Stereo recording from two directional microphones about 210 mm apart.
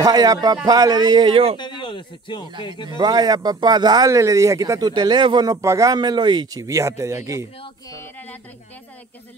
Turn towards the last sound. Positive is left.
turn(degrees=-15)  # may be behind; listen again after turning